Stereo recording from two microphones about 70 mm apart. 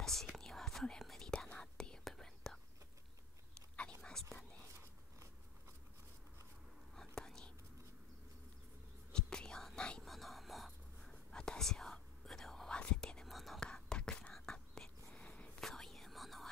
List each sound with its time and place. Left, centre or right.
0.0 s whispering: centre
3.7 s whispering: centre
7.0 s whispering: centre
9.1 s whispering: centre
10.0 s whispering: centre